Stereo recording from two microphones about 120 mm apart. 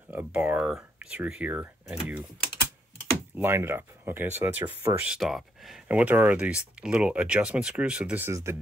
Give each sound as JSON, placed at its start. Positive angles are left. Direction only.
{"t": 0.1, "sound": "a sound", "side_deg": -15}
{"t": 1.0, "sound": "speech", "side_deg": -10}
{"t": 3.3, "sound": "speech", "side_deg": -20}
{"t": 8.3, "sound": "speech", "side_deg": -25}